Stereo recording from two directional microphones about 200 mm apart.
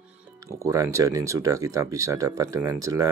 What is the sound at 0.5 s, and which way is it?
Speech, 15° right (ahead or behind).